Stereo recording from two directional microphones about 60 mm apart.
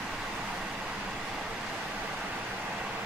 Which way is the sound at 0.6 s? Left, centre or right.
Centre.